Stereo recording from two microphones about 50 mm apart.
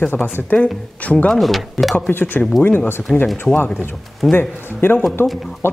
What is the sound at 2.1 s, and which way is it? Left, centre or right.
Speech, left.